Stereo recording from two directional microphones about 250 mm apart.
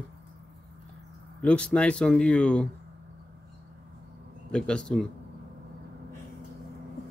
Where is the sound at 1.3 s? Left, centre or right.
Centre.